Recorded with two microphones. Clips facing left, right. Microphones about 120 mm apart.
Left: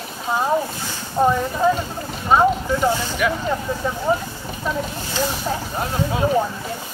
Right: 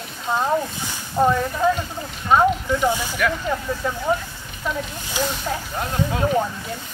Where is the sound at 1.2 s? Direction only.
15° left (ahead or behind).